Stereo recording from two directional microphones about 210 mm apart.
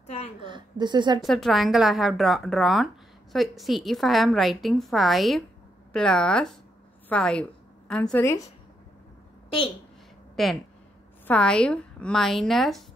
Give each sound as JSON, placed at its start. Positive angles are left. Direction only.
{"t": 0.0, "sound": "a sound", "side_deg": 30}
{"t": 0.4, "sound": "speech", "side_deg": -20}
{"t": 1.2, "sound": "a woman's voice", "side_deg": 0}
{"t": 10.3, "sound": "a woman's voice", "side_deg": 0}